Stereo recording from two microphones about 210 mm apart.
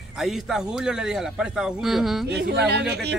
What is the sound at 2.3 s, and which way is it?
Speech, 50° right (ahead or behind).